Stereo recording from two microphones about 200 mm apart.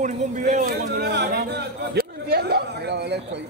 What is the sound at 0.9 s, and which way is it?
Speech, 55° right (ahead or behind).